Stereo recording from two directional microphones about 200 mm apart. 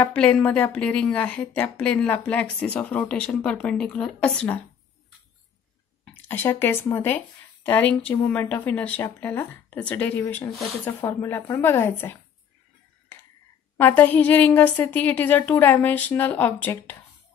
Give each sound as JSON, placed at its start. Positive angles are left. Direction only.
{"t": 0.1, "sound": "a woman's voice", "side_deg": 5}
{"t": 6.1, "sound": "a woman's voice", "side_deg": 10}
{"t": 13.7, "sound": "a woman's voice", "side_deg": 10}